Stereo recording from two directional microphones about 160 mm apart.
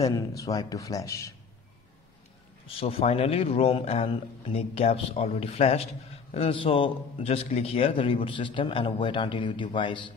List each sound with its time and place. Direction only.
0.0 s speech: 20° left (ahead or behind)
2.6 s a man's voice: 35° left (ahead or behind)